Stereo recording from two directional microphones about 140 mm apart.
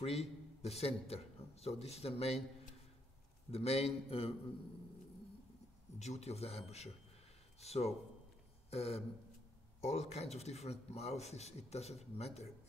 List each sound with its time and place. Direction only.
0.0 s a man's voice: 50° left (ahead or behind)
3.5 s a man's voice: 45° left (ahead or behind)
5.9 s a man's voice: 50° left (ahead or behind)
8.6 s a sound: 45° left (ahead or behind)
9.8 s a man's voice: 50° left (ahead or behind)